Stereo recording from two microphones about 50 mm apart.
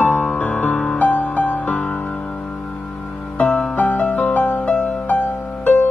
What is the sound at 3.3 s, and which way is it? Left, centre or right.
Music, left.